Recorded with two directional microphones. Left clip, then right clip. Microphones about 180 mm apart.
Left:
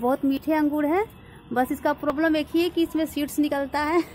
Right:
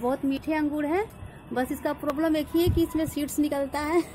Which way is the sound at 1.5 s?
40° left (ahead or behind).